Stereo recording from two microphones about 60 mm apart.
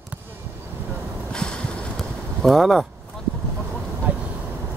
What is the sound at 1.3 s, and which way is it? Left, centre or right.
Vehicle, centre.